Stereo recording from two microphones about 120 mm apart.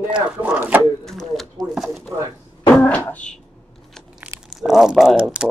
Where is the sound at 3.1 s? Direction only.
10° left (ahead or behind).